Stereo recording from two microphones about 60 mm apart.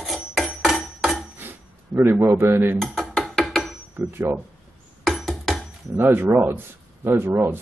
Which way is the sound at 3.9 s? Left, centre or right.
Right.